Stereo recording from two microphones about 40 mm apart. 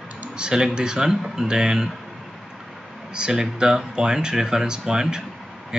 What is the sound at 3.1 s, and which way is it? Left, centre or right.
Speech, centre.